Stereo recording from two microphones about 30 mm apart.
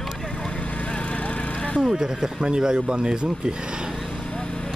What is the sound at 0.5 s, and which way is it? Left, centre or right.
Vehicle, left.